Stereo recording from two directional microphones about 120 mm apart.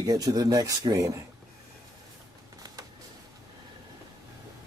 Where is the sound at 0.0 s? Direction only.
35° right (ahead or behind).